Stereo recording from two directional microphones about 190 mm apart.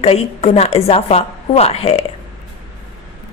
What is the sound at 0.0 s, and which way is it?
A woman's voice, 30° left (ahead or behind).